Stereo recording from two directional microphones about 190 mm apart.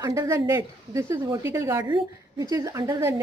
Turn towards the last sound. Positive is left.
turn(degrees=-15)  # may be behind; listen again after turning